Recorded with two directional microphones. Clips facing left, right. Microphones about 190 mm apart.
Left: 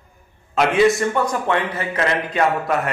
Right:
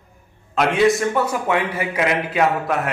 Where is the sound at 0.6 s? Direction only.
Centre (ahead or behind).